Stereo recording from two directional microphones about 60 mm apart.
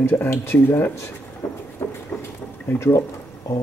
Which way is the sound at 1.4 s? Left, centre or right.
Left.